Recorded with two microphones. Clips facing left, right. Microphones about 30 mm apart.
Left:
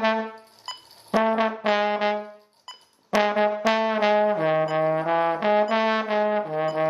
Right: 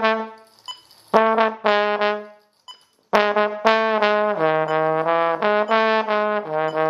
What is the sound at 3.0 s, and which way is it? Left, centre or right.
Brass instrument, right.